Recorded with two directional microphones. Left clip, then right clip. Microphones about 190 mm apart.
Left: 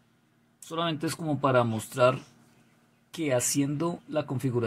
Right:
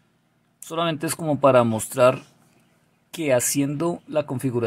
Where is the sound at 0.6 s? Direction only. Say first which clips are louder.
Right 5 dB; 30° right (ahead or behind).